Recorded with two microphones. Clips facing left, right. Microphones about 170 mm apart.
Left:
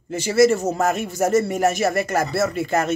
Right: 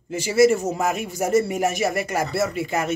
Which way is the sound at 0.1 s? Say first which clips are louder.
Left 1 dB; 10° right (ahead or behind).